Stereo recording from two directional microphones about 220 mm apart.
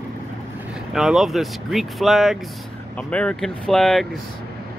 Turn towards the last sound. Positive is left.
turn(degrees=0)  # may be behind; listen again after turning